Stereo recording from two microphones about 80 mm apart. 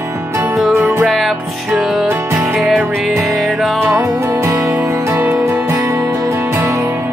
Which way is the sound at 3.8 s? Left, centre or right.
Right.